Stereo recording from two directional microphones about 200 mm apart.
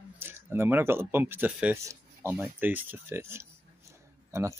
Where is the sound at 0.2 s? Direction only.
10° right (ahead or behind).